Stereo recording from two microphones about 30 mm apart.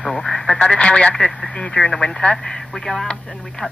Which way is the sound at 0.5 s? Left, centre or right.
Left.